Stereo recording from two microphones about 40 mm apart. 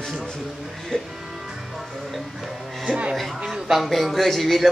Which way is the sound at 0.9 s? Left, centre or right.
Centre.